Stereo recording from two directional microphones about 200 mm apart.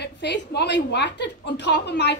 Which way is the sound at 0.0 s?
55° left (ahead or behind).